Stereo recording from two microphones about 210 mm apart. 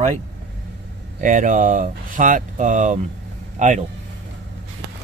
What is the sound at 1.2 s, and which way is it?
Speech, 40° right (ahead or behind).